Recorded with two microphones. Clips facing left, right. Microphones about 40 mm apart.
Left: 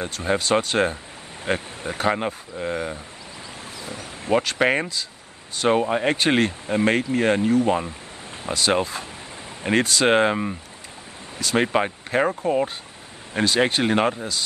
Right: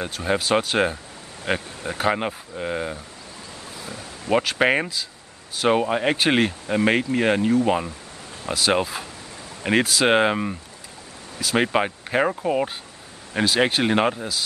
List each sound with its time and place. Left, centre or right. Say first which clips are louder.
0.0 s speech: even; centre
4.3 s speech: even; centre